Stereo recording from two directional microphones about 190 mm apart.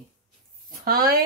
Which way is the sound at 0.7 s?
50° right (ahead or behind).